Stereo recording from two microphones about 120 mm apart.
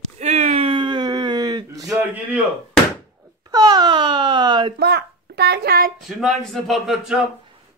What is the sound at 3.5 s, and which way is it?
Speech, 35° right (ahead or behind).